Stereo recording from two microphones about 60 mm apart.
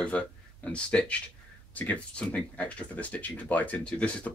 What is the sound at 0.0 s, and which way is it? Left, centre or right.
Speech, centre.